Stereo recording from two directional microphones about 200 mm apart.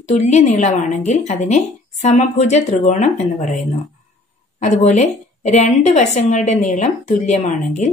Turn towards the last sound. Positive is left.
turn(degrees=35)  # may be behind; listen again after turning